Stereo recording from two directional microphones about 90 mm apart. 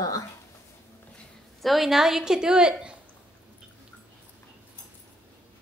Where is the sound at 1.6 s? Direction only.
Centre (ahead or behind).